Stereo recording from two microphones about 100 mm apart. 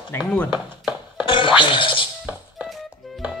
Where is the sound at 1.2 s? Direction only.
55° left (ahead or behind).